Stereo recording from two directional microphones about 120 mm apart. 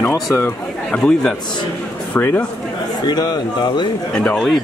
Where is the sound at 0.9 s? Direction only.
5° left (ahead or behind).